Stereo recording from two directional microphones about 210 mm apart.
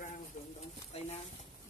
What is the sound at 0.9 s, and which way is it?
Speech, 30° left (ahead or behind).